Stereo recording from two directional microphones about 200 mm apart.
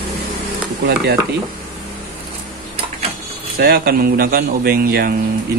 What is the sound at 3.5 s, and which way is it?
Speech, 50° right (ahead or behind).